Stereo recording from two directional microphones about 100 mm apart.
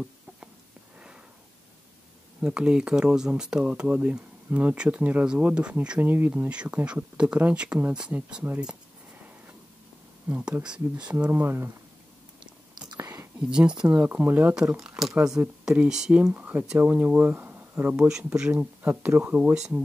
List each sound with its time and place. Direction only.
2.4 s speech: 10° right (ahead or behind)
10.3 s speech: 15° right (ahead or behind)
11.2 s speech: 20° right (ahead or behind)
12.7 s whispering: 40° right (ahead or behind)
13.5 s speech: 10° right (ahead or behind)
14.8 s speech: centre (ahead or behind); by 17.9 s 20° right (ahead or behind)
17.9 s speech: 5° right (ahead or behind)
18.5 s speech: 20° right (ahead or behind)
19.5 s speech: 5° right (ahead or behind)